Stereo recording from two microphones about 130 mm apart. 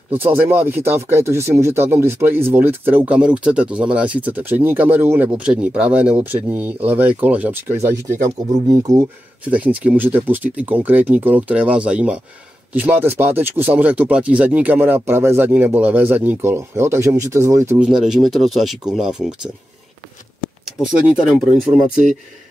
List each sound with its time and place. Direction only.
0.1 s speech: 15° right (ahead or behind)
9.5 s speech: 10° right (ahead or behind)
17.7 s speech: 5° right (ahead or behind)
20.6 s speech: centre (ahead or behind)